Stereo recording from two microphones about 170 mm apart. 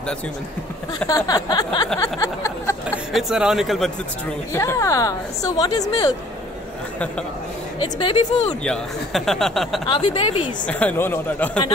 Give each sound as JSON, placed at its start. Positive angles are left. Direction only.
{"t": 1.0, "sound": "a woman's voice", "side_deg": 20}
{"t": 2.0, "sound": "a sound", "side_deg": 20}
{"t": 3.1, "sound": "speech", "side_deg": 0}
{"t": 4.6, "sound": "a woman's voice", "side_deg": 15}
{"t": 7.8, "sound": "speech", "side_deg": 30}
{"t": 8.6, "sound": "speech", "side_deg": 0}
{"t": 9.8, "sound": "speech", "side_deg": 30}
{"t": 10.7, "sound": "speech", "side_deg": 10}